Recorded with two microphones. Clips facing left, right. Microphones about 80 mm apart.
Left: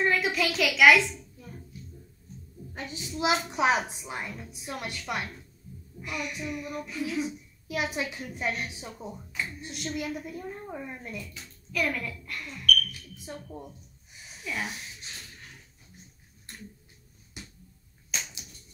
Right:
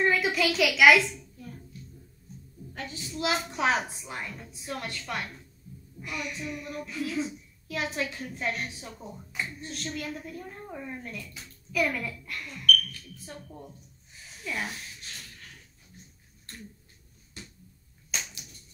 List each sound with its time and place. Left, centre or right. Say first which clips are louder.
0.0 s a woman's voice: right 1 dB; centre
1.1 s a sound: right 1 dB; centre
2.7 s a woman's voice: left 1 dB; left
5.9 s a woman's voice: left 1 dB; centre
11.7 s a child's voice: right 1 dB; centre
12.4 s smoke detector: even; centre
13.5 s a sound: left 3 dB; centre
17.4 s finger snapping: even; centre